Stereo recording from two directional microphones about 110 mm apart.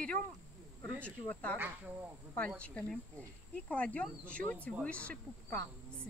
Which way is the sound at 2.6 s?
10° left (ahead or behind).